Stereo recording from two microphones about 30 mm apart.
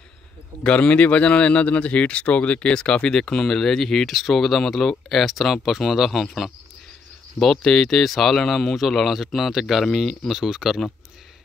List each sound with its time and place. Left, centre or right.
0.7 s a man's voice: left
2.7 s speech: left; by 5.2 s centre
5.2 s speech: centre
7.6 s speech: centre